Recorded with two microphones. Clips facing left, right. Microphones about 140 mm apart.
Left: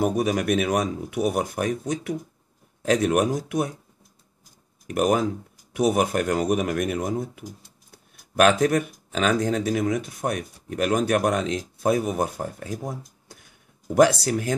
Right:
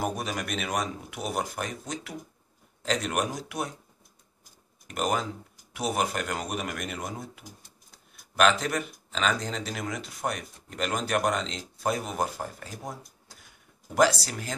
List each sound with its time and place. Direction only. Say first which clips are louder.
0.0 s speech: left 9 dB; 55° left (ahead or behind)
4.9 s speech: left 7 dB; 55° left (ahead or behind)